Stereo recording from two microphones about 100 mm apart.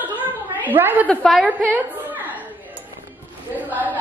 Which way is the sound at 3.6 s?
15° right (ahead or behind).